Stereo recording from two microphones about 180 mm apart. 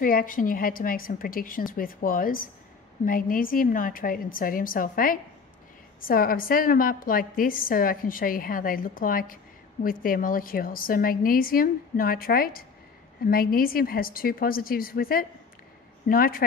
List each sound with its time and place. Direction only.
0.0 s a woman's voice: 50° left (ahead or behind)